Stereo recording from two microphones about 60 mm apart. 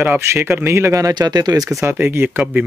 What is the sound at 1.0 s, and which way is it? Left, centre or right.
Speech, right.